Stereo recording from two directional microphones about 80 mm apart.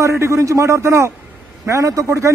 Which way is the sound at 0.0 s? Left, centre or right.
Right.